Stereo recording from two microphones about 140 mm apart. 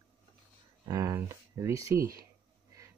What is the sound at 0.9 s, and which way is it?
Speech, 25° right (ahead or behind).